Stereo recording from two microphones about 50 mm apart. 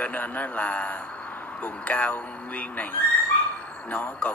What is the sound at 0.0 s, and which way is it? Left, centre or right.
A man's voice, left.